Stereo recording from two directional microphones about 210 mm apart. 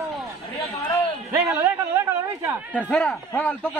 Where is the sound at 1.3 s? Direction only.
10° right (ahead or behind).